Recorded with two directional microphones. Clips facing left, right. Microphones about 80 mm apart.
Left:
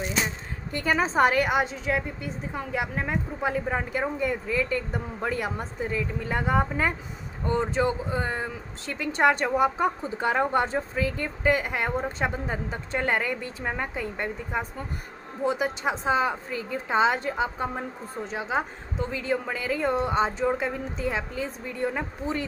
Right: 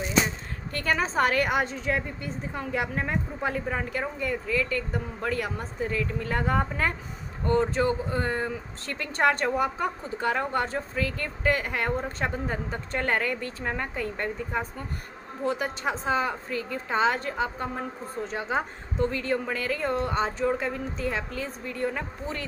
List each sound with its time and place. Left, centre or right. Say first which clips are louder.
0.7 s speech: left 3 dB; centre
18.3 s speech: left 1 dB; centre